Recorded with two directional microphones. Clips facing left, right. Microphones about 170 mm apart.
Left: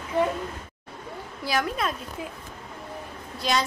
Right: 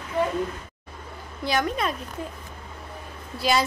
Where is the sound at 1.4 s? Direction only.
5° left (ahead or behind).